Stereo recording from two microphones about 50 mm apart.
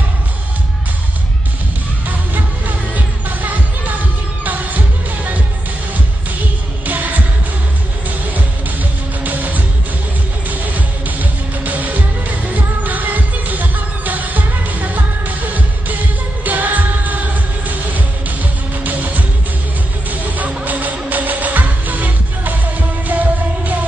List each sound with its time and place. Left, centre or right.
2.9 s music: right
6.9 s music: right
9.2 s music: right